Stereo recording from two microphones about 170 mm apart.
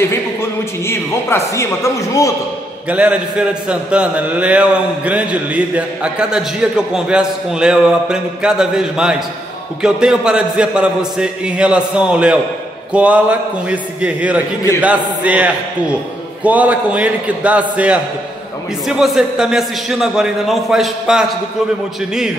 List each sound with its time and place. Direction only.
0.4 s speech: 15° left (ahead or behind)
2.9 s a man's voice: 5° right (ahead or behind)